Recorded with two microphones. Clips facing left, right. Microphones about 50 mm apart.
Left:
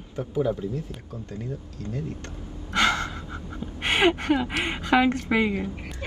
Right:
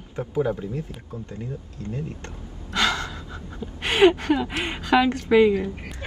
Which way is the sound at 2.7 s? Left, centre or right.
Left.